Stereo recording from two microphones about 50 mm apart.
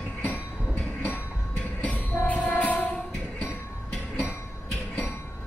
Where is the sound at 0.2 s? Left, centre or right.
Left.